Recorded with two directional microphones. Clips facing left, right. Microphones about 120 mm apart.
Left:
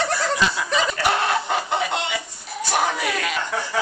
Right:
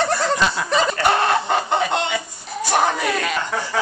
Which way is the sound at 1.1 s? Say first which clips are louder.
Right 4 dB; 40° right (ahead or behind).